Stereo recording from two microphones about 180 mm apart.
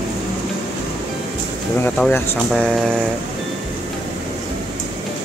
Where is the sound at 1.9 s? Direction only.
5° left (ahead or behind).